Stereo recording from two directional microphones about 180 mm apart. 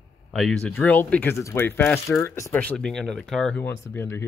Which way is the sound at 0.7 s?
10° left (ahead or behind).